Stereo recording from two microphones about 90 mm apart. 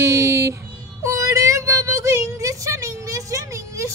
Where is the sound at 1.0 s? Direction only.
35° right (ahead or behind).